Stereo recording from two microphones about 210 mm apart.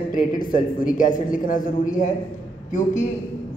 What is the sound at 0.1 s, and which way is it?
A man's voice, 40° left (ahead or behind).